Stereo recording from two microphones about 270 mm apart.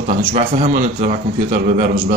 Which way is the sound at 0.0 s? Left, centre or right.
Right.